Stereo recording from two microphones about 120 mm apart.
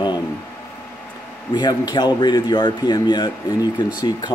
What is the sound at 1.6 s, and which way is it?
Speech, 35° left (ahead or behind).